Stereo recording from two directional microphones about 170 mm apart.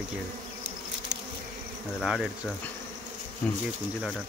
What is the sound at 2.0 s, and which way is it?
Speech, centre (ahead or behind).